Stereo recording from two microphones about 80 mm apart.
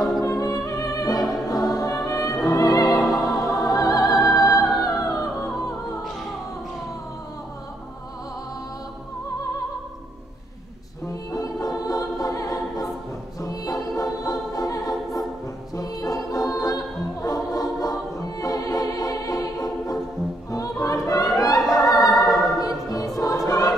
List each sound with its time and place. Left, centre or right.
0.2 s music: left
11.3 s music: left